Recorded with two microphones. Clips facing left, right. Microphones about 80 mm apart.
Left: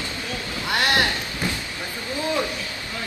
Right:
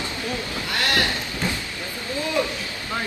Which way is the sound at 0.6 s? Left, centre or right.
Left.